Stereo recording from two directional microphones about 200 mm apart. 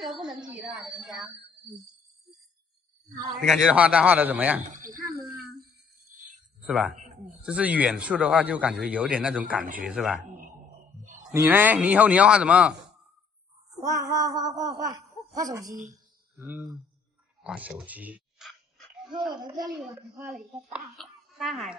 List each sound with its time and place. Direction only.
0.0 s a woman's voice: 5° right (ahead or behind)
3.4 s a man's voice: 5° right (ahead or behind)
4.6 s a sound: 40° right (ahead or behind)
6.6 s a man's voice: 5° right (ahead or behind)
11.3 s a man's voice: 10° right (ahead or behind)
14.0 s a man's voice: 20° right (ahead or behind)
17.4 s dog: 5° right (ahead or behind)
19.1 s speech: 20° right (ahead or behind)
19.8 s speech: centre (ahead or behind)